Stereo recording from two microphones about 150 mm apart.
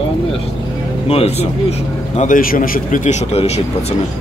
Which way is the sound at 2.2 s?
65° left (ahead or behind).